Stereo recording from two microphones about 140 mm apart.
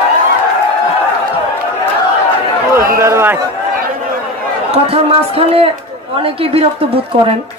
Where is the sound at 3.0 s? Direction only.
20° right (ahead or behind).